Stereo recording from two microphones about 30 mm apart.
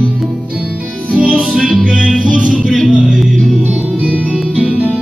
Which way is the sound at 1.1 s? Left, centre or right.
Right.